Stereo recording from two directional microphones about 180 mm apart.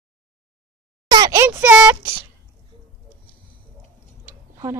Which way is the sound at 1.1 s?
20° right (ahead or behind).